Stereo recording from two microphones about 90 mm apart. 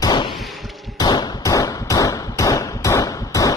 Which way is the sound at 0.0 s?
50° left (ahead or behind).